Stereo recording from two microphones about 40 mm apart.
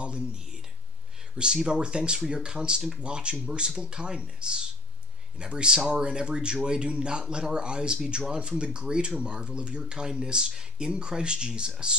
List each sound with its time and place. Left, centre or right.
0.0 s speech: right